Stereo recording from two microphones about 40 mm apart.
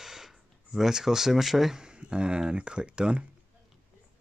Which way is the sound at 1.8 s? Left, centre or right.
Right.